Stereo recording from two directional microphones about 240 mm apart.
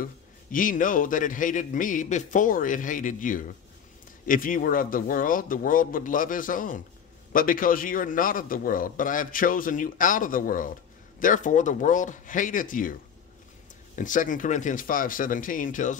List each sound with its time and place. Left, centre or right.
0.0 s a man's voice: left